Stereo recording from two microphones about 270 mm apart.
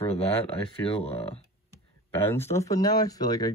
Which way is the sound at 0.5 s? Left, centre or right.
Left.